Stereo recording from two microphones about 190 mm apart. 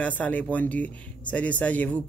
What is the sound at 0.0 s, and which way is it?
Speech, 10° left (ahead or behind).